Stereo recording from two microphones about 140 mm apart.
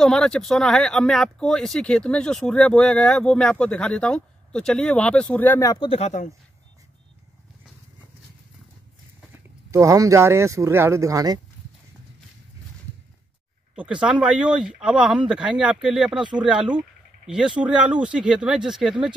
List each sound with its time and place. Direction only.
0.0 s speech: 5° left (ahead or behind)
5.7 s speech: 35° left (ahead or behind)
5.9 s speech: 55° left (ahead or behind)
9.7 s speech: 20° right (ahead or behind)
14.0 s speech: 10° right (ahead or behind)